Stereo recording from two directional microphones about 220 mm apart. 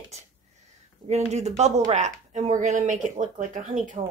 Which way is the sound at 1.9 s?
30° right (ahead or behind).